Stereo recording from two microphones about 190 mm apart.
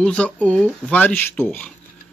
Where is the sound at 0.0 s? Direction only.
5° left (ahead or behind).